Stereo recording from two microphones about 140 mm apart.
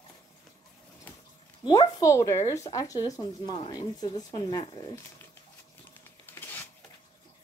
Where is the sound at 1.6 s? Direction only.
35° left (ahead or behind).